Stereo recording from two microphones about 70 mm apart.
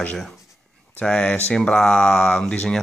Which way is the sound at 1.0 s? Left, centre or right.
Centre.